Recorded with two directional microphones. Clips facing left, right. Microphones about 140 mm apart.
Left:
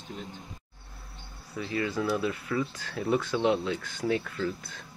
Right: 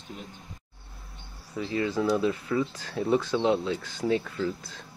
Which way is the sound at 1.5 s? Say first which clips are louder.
Right 3 dB; 25° right (ahead or behind).